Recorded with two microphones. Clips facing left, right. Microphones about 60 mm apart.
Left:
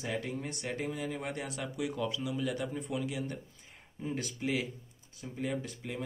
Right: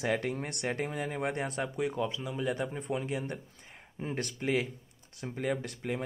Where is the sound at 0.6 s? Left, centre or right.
Right.